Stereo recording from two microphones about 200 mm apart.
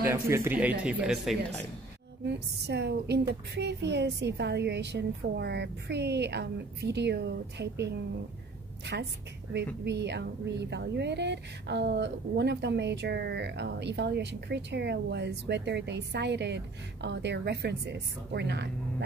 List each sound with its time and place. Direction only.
0.0 s speech: 15° right (ahead or behind)
2.2 s a woman's voice: 55° right (ahead or behind)
9.8 s a woman's voice: 60° right (ahead or behind)